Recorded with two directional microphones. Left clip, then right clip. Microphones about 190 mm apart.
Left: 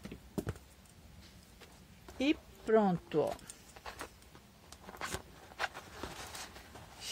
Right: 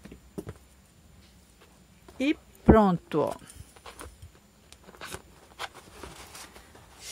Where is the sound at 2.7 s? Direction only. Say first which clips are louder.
Right 8 dB; 50° right (ahead or behind).